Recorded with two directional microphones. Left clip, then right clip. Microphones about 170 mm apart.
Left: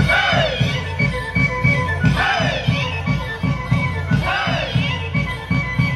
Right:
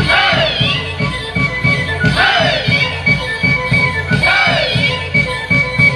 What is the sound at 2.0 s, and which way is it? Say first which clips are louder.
Music: right 9 dB; centre (ahead or behind).